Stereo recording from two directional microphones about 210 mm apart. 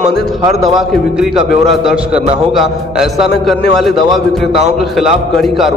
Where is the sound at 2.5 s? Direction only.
Centre (ahead or behind).